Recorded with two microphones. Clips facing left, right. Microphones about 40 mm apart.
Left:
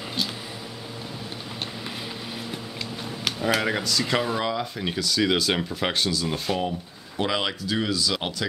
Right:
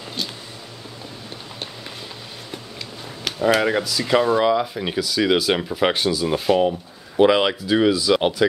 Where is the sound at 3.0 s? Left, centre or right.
Centre.